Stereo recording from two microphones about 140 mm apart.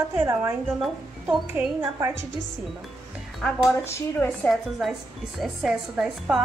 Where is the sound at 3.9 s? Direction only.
20° left (ahead or behind).